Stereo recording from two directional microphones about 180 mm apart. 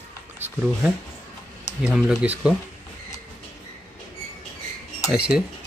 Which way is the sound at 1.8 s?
5° right (ahead or behind).